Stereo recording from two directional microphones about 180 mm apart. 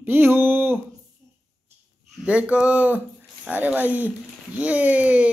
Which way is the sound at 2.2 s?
5° right (ahead or behind).